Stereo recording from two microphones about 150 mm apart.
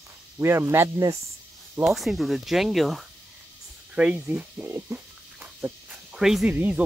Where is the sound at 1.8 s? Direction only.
Centre (ahead or behind).